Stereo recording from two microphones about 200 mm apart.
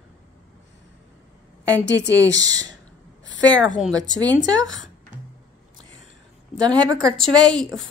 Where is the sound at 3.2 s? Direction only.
65° left (ahead or behind).